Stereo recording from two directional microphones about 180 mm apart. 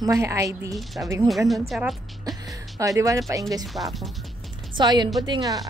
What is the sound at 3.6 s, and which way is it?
Speech, centre (ahead or behind).